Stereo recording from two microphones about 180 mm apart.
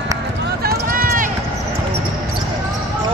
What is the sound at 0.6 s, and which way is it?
Run, 55° right (ahead or behind).